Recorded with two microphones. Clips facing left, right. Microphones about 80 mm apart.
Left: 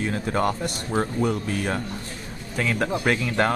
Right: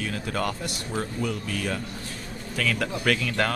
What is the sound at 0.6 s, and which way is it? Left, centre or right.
Speech, left.